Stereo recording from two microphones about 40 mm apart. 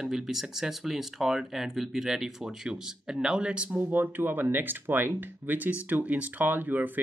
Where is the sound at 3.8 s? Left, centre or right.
Right.